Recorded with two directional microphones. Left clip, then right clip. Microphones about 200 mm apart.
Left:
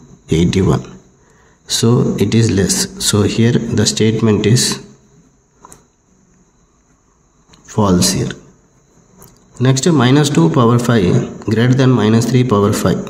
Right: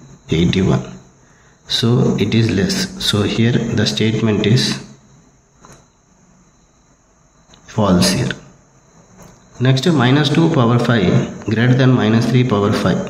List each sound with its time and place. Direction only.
0.3 s a man's voice: 30° left (ahead or behind)
7.5 s speech: 30° left (ahead or behind)
9.6 s a man's voice: 35° left (ahead or behind)